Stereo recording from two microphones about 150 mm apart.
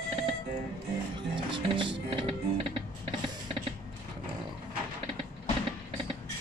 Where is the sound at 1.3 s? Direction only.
35° right (ahead or behind).